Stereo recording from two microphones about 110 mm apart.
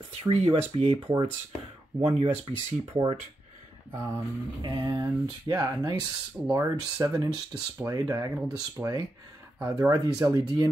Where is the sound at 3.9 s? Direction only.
25° right (ahead or behind).